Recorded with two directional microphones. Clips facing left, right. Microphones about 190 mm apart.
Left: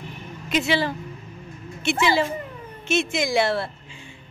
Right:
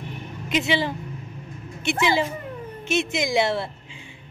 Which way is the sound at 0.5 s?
20° right (ahead or behind).